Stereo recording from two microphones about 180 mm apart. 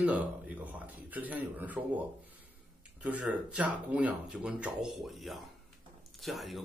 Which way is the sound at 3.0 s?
5° right (ahead or behind).